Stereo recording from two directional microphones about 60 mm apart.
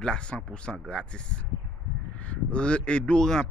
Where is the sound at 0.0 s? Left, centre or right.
Centre.